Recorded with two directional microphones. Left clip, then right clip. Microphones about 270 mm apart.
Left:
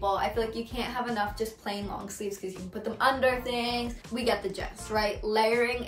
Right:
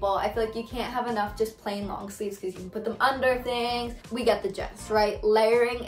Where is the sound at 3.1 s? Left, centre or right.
Centre.